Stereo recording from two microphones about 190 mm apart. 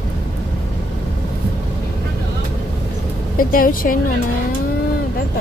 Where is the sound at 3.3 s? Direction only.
45° left (ahead or behind).